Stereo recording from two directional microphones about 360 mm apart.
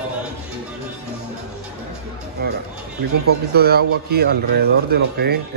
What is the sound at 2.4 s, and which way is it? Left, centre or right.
Music, right.